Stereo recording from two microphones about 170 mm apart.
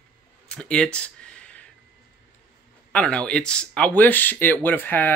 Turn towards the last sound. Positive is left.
turn(degrees=10)  # may be behind; listen again after turning